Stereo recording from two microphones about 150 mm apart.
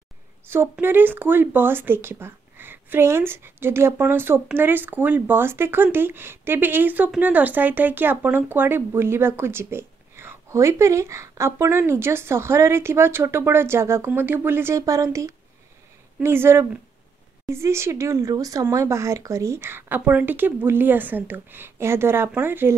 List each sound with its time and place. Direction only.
0.5 s speech: 15° right (ahead or behind)